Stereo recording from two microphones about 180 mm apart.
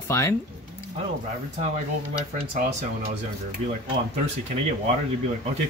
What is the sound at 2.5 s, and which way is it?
Speech, 40° right (ahead or behind).